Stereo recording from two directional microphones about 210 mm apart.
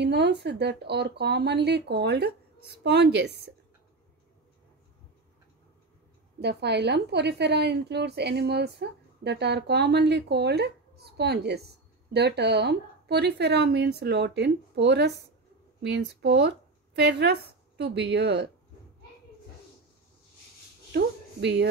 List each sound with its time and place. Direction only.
0.0 s a woman's voice: 55° right (ahead or behind)
6.4 s a woman's voice: 55° right (ahead or behind)
20.9 s speech: 55° right (ahead or behind)